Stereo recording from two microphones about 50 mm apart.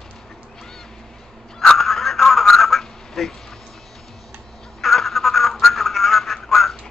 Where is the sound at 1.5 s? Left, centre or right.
Centre.